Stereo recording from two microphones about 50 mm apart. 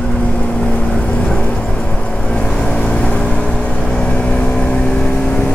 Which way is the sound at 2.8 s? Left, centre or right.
Left.